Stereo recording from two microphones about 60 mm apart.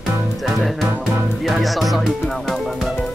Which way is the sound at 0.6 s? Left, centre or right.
Centre.